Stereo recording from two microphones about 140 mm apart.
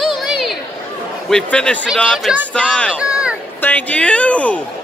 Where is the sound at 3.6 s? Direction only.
10° left (ahead or behind).